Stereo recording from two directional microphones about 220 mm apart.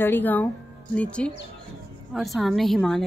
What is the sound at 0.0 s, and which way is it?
A woman's voice, 10° left (ahead or behind).